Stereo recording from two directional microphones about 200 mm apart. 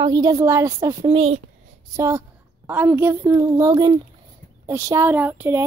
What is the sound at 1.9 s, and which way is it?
A woman's voice, 15° right (ahead or behind).